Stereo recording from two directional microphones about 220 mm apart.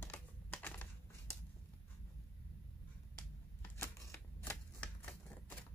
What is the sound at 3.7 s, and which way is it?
Shuffling cards, 10° left (ahead or behind).